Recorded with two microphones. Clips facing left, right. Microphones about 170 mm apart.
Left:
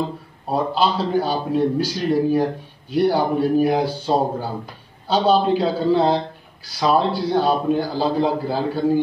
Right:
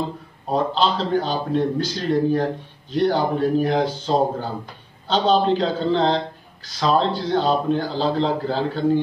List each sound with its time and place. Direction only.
0.5 s speech: 10° left (ahead or behind)